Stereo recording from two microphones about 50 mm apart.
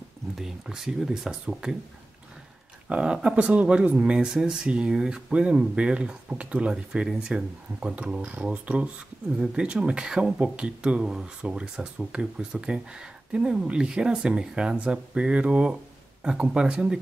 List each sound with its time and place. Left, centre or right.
0.4 s speech: centre
2.9 s speech: right
4.3 s speech: centre
6.7 s speech: centre